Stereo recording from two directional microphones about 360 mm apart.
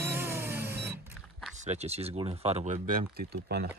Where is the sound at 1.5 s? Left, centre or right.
Centre.